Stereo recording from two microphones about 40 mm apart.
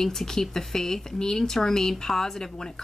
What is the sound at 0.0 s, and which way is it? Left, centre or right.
Speech, centre.